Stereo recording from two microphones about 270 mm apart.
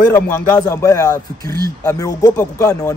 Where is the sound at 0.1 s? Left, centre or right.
Centre.